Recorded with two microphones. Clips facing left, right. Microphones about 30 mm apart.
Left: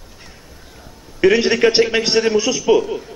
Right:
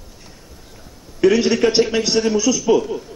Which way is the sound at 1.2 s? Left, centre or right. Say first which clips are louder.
Left 1 dB; left.